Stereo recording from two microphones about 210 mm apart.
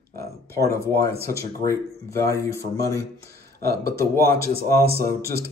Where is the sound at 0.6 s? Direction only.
15° left (ahead or behind).